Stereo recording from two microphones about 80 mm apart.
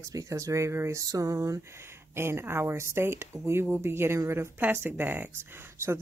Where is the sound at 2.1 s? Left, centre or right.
Right.